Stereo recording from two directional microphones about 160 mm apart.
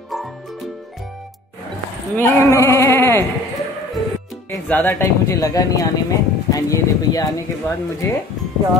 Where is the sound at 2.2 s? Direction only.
15° left (ahead or behind).